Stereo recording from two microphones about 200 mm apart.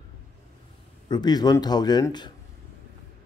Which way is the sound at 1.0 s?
20° left (ahead or behind).